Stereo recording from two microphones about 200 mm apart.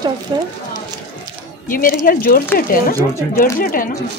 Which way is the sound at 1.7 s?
45° left (ahead or behind).